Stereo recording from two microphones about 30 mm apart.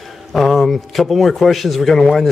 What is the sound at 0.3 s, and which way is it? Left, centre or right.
Speech, centre.